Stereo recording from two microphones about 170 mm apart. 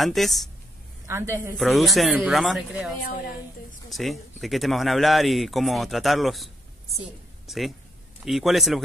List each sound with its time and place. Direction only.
0.0 s speech: centre (ahead or behind)
1.0 s a woman's voice: 15° right (ahead or behind)
1.6 s speech: centre (ahead or behind)
3.9 s speech: centre (ahead or behind)